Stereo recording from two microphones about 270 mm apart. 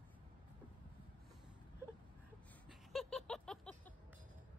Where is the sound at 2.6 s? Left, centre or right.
Centre.